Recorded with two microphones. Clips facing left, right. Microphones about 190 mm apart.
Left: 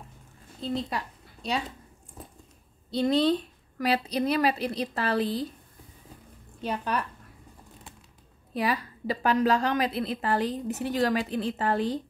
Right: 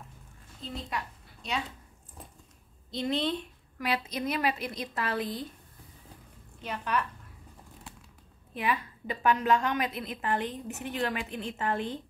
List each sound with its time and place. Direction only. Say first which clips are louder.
0.8 s a sound: left 3 dB; 35° left (ahead or behind)
2.9 s a woman's voice: left 7 dB; 35° left (ahead or behind)
6.6 s a woman's voice: left 2 dB; 35° left (ahead or behind)
8.5 s a woman's voice: left 3 dB; 35° left (ahead or behind)